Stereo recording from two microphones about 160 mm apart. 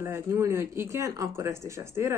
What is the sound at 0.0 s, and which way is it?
Speech, 15° right (ahead or behind).